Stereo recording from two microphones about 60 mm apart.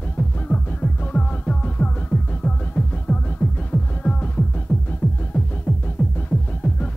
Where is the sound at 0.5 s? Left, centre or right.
Left.